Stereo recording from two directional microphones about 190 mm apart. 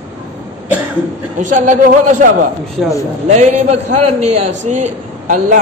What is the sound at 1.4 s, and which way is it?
A man's voice, 40° right (ahead or behind).